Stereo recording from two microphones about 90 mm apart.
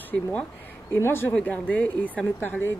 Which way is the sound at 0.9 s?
25° left (ahead or behind).